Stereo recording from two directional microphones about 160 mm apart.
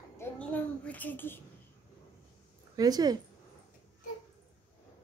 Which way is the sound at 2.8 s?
25° right (ahead or behind).